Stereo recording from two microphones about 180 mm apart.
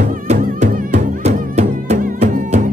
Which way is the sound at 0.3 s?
40° right (ahead or behind).